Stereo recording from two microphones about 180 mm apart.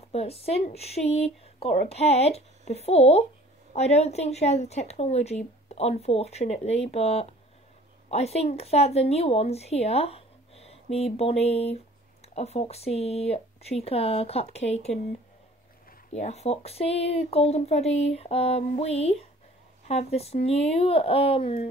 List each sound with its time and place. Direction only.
0.1 s speech: 35° left (ahead or behind)
16.1 s speech: 40° left (ahead or behind)